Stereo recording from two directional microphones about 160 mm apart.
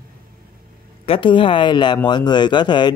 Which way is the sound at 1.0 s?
35° left (ahead or behind).